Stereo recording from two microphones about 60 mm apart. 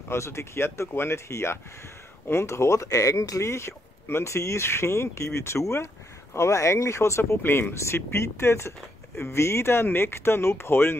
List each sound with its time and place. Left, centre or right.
0.1 s speech: left